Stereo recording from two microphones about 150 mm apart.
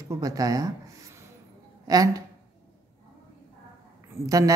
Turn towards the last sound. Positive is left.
turn(degrees=-20)  # may be behind; listen again after turning